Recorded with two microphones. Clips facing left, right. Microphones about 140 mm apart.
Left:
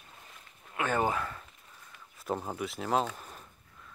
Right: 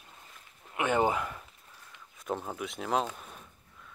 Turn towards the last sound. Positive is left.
turn(degrees=0)  # may be behind; listen again after turning